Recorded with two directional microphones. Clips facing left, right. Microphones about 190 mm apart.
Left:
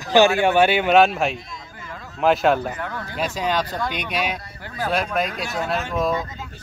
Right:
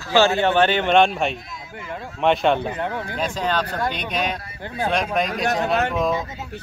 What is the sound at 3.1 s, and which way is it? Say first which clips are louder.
Speech: left 2 dB; 10° left (ahead or behind).